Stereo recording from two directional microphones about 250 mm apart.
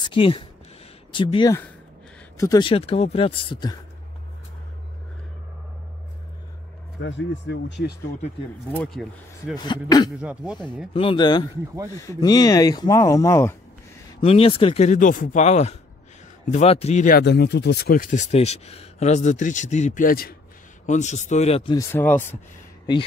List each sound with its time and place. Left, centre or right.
0.1 s speech: left
7.0 s speech: left
9.0 s speech: centre
9.6 s speech: centre
10.2 s speech: centre
10.9 s speech: left
14.2 s speech: left
21.9 s speech: centre